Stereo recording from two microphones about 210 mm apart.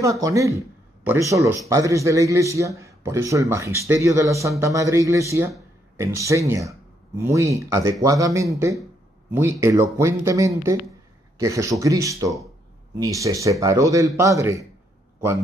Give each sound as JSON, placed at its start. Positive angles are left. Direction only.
{"t": 0.0, "sound": "a man's voice", "side_deg": -15}